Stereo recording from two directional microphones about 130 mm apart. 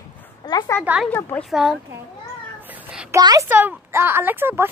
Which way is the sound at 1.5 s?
5° right (ahead or behind).